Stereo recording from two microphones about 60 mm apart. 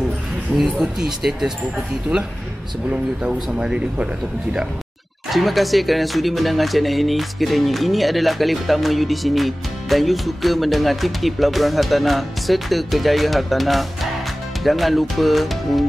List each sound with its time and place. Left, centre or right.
0.6 s speech: centre
2.9 s speech: centre
5.3 s speech: centre